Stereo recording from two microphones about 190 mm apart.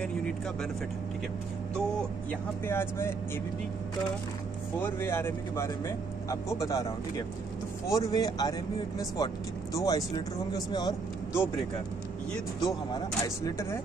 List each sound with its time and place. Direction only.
2.6 s speech: 10° left (ahead or behind)
4.8 s speech: 10° left (ahead or behind)
7.9 s speech: 20° left (ahead or behind)
12.3 s speech: centre (ahead or behind)
12.9 s speech: 20° left (ahead or behind)